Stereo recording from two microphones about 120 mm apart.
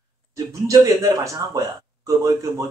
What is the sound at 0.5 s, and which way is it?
A man's voice, 25° right (ahead or behind).